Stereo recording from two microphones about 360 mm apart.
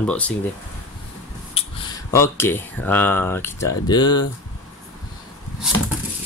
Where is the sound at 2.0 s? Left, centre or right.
Centre.